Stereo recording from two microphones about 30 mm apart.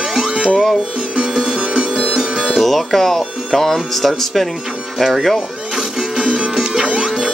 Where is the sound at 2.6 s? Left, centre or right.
Centre.